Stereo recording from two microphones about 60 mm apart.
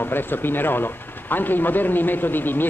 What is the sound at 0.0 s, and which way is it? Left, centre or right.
A man's voice, left.